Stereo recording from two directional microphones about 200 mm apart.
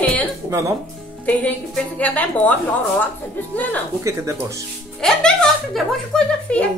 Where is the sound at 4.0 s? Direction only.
15° right (ahead or behind).